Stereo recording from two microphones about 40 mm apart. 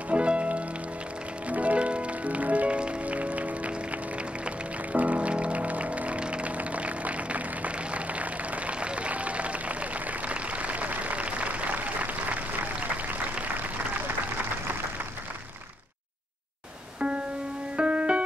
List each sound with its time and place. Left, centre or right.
0.1 s music: right
14.0 s applause: right
17.7 s music: right